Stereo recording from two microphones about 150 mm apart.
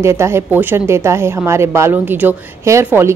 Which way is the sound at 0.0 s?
20° right (ahead or behind).